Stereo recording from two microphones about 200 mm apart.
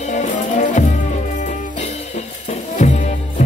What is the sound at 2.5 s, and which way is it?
Music, 35° left (ahead or behind).